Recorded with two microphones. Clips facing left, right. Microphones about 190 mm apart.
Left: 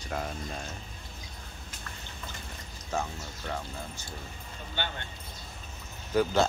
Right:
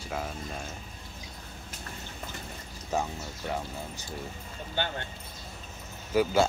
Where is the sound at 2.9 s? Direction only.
15° right (ahead or behind).